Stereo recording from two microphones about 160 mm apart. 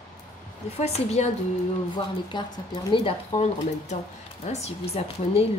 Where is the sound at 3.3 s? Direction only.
45° left (ahead or behind).